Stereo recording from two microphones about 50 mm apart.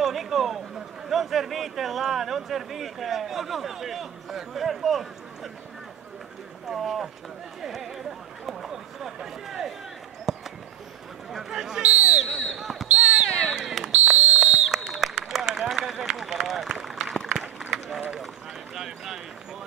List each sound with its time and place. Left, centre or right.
0.0 s speech: centre
6.7 s speech: centre
10.3 s a sound: centre
11.3 s speech: centre
11.8 s speech: right
12.3 s speech: centre
12.5 s basketball bounce: centre
12.8 s a sound: right
13.3 s a sound: centre
15.7 s run: centre
18.8 s speech: centre